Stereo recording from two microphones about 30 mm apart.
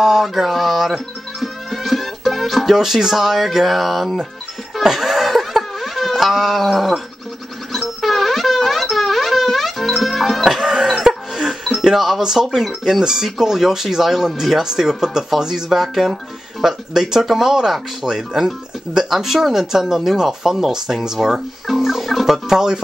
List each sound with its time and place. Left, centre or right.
0.0 s music: centre
2.7 s speech: centre
4.9 s a sound: centre
7.7 s music: centre
10.4 s music: centre
11.9 s speech: centre
21.6 s fowl: centre